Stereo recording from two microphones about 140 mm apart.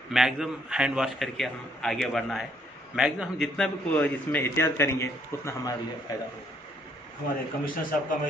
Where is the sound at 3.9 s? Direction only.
10° left (ahead or behind).